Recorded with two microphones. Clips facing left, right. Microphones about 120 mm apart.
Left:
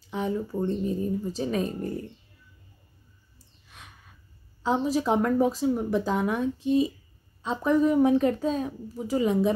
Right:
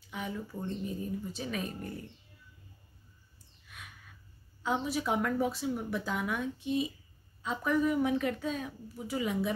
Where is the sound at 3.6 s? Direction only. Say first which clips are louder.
Left 1 dB; 30° left (ahead or behind).